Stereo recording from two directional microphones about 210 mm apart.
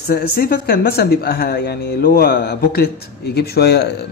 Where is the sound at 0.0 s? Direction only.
45° left (ahead or behind).